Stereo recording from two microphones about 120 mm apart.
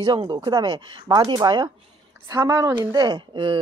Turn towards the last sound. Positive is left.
turn(degrees=-40)  # may be behind; listen again after turning